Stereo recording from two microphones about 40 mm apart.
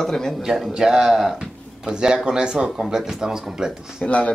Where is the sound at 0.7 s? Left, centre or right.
Centre.